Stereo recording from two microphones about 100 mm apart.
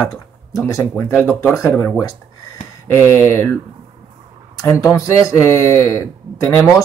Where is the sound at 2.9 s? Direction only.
30° left (ahead or behind).